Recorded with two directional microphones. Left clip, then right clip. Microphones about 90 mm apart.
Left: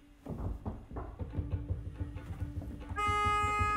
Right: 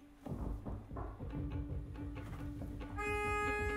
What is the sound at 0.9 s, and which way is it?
Music, 15° left (ahead or behind).